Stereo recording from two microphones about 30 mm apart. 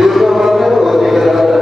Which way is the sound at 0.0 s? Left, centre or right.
Centre.